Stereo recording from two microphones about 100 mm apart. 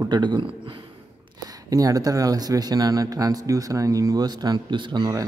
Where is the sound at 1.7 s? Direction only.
35° right (ahead or behind).